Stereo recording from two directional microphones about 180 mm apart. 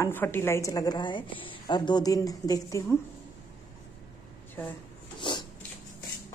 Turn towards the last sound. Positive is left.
turn(degrees=25)  # may be behind; listen again after turning